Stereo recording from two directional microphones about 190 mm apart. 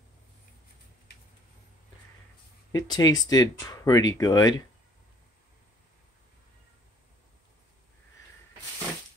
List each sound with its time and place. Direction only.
2.7 s speech: 20° left (ahead or behind)